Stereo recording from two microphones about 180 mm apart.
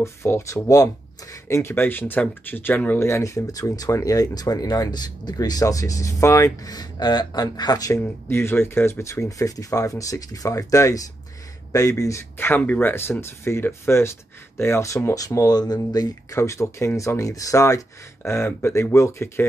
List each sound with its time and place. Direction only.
0.0 s speech: 15° left (ahead or behind)